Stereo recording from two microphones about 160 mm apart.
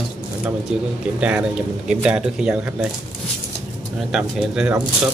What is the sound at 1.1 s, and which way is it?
Speech, 10° right (ahead or behind).